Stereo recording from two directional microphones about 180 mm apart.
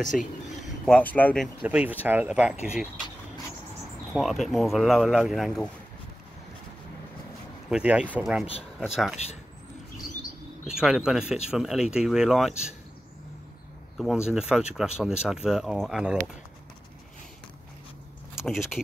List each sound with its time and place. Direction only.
0.0 s speech: 45° left (ahead or behind)
0.6 s speech: centre (ahead or behind)
1.6 s speech: 5° right (ahead or behind)
4.1 s speech: centre (ahead or behind)
7.7 s speech: 5° right (ahead or behind)
10.6 s speech: 5° right (ahead or behind)
13.9 s speech: centre (ahead or behind)
18.3 s speech: centre (ahead or behind)